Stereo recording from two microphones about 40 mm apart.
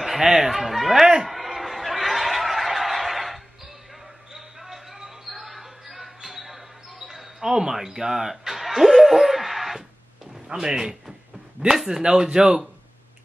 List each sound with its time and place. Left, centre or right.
0.0 s a man's voice: centre
1.3 s a sound: centre
4.3 s basketball bounce: centre
10.5 s speech: centre